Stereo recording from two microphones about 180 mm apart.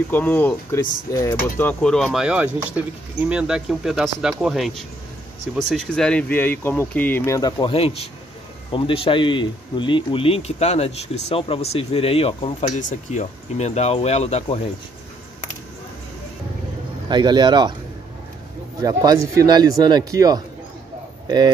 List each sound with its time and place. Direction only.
0.1 s speech: 10° left (ahead or behind)
7.7 s speech: 35° left (ahead or behind)
12.7 s speech: 40° left (ahead or behind)
17.1 s a man's voice: 25° right (ahead or behind)
18.8 s a man's voice: 20° right (ahead or behind)